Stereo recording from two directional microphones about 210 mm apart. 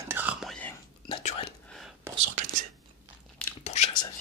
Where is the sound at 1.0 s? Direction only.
25° left (ahead or behind).